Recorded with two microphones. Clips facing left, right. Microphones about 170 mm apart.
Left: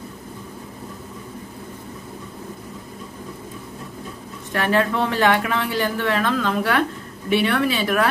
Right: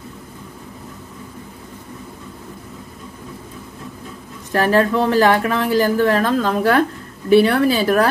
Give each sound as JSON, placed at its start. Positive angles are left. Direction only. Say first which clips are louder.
{"t": 4.5, "sound": "speech", "louder": "right 5 dB", "side_deg": -40}